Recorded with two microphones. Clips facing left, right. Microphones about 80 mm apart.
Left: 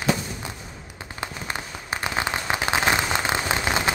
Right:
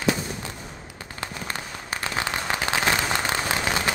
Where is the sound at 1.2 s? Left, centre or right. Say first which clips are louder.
Left 1 dB; left.